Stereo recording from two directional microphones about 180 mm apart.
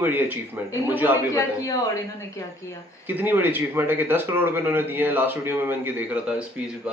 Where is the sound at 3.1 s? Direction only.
10° right (ahead or behind).